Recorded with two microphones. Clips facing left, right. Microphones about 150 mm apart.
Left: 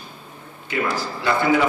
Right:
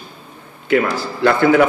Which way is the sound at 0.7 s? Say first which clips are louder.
Right 7 dB; 60° right (ahead or behind).